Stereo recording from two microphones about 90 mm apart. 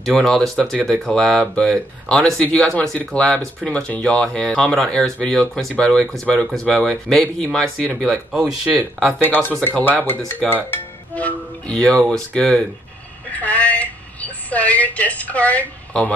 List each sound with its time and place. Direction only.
0.2 s speech: 5° left (ahead or behind)
9.2 s speech: 20° left (ahead or behind)
13.3 s a sound: 15° left (ahead or behind)